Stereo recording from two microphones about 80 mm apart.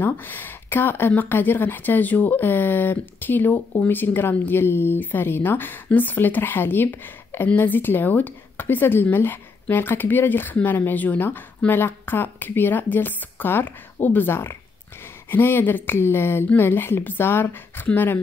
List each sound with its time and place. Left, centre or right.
0.0 s speech: left